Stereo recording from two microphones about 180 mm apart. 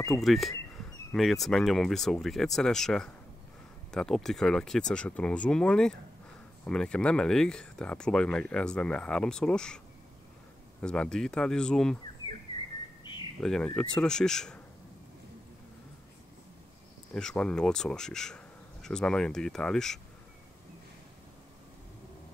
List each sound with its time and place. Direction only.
0.2 s speech: centre (ahead or behind)
10.8 s speech: 5° left (ahead or behind)
13.0 s a sound: 25° left (ahead or behind)
13.4 s speech: 5° left (ahead or behind)
17.1 s speech: 5° left (ahead or behind)